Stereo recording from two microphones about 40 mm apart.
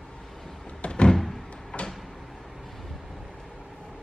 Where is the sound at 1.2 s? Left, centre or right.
Centre.